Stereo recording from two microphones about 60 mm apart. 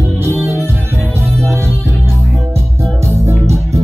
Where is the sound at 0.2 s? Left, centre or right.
Right.